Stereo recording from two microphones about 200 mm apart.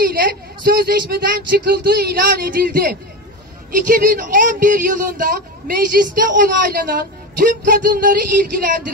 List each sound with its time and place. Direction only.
0.0 s a woman's voice: 45° right (ahead or behind)